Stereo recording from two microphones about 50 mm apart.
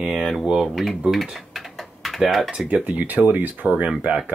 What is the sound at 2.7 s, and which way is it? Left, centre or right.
Speech, right.